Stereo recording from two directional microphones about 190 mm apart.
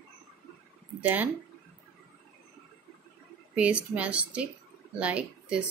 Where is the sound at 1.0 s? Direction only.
10° right (ahead or behind).